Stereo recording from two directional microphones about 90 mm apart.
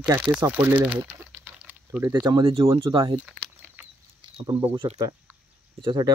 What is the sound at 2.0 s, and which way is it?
Speech, 25° right (ahead or behind).